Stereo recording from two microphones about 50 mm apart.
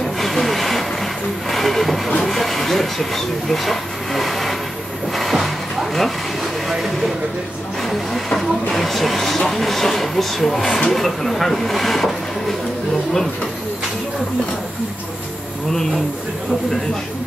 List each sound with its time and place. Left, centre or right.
0.0 s hiss: centre
1.5 s vehicle: centre
2.2 s speech: centre
5.1 s a sound: centre
7.8 s speech: centre
15.7 s speech: centre